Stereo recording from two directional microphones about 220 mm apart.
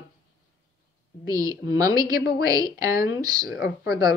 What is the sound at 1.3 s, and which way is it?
A woman's voice, 15° right (ahead or behind).